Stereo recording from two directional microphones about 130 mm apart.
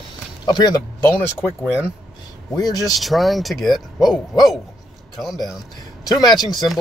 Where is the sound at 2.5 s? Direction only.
30° left (ahead or behind).